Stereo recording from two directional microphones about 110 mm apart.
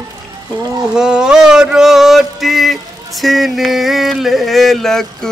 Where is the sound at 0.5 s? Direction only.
35° right (ahead or behind).